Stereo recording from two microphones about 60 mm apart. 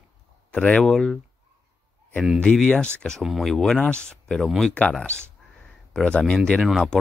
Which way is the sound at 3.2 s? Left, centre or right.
Centre.